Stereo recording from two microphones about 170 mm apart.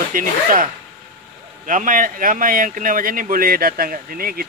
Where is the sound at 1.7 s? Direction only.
50° right (ahead or behind).